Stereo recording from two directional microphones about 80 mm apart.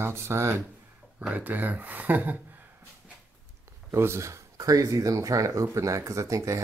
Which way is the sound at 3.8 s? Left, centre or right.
Right.